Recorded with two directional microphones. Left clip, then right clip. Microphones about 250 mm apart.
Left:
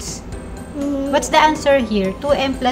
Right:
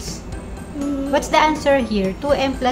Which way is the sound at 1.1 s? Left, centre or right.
Centre.